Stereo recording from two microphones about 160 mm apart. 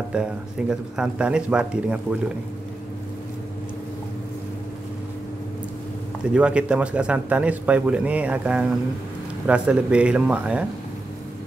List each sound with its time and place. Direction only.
0.1 s speech: 5° right (ahead or behind)
6.3 s speech: 5° right (ahead or behind)